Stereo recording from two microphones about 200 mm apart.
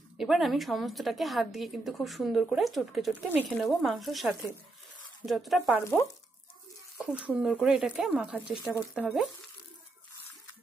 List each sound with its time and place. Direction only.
0.2 s a woman's voice: centre (ahead or behind)
5.9 s frying: 15° left (ahead or behind)
7.2 s a woman's voice: 5° right (ahead or behind)